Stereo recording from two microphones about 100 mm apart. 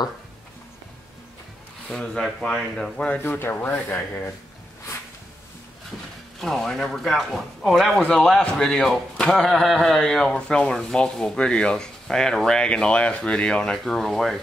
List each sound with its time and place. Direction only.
1.9 s a man's voice: 10° left (ahead or behind)
3.3 s speech: 20° left (ahead or behind)
6.4 s a man's voice: 5° left (ahead or behind)